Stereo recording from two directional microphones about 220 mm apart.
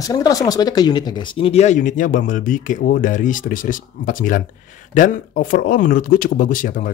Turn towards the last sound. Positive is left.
turn(degrees=35)  # may be behind; listen again after turning